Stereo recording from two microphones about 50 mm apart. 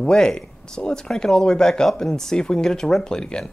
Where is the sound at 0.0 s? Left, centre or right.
Centre.